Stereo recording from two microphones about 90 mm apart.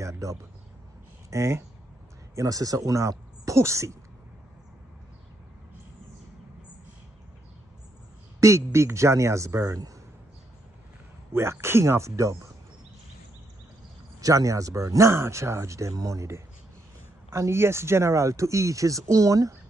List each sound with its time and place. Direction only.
0.0 s speech: 35° right (ahead or behind)
8.4 s speech: 35° right (ahead or behind)
11.3 s speech: 30° right (ahead or behind)
14.2 s speech: 40° right (ahead or behind)